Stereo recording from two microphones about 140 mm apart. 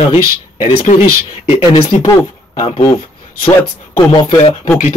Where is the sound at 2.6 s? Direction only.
40° left (ahead or behind).